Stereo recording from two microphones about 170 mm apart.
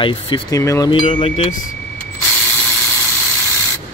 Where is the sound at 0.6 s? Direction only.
15° left (ahead or behind).